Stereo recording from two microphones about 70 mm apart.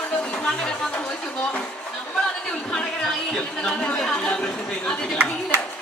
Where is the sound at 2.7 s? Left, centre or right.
Centre.